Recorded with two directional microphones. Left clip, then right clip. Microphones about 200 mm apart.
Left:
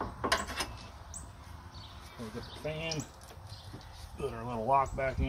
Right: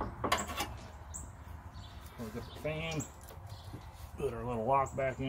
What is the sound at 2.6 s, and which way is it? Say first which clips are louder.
Speech: left 1 dB; 5° left (ahead or behind).